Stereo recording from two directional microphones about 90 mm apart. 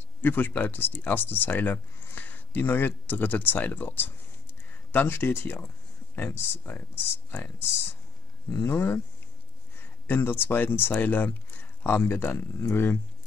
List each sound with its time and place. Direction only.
0.2 s speech: 20° left (ahead or behind)
8.6 s speech: 25° left (ahead or behind)
10.0 s speech: 25° left (ahead or behind)